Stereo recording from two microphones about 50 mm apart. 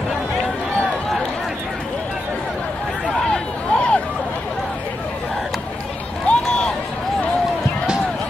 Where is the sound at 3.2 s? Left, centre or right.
Left.